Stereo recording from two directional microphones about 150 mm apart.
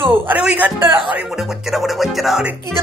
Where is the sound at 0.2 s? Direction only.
10° right (ahead or behind).